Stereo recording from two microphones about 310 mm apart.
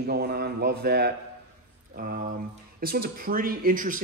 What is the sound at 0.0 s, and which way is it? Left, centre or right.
Speech, right.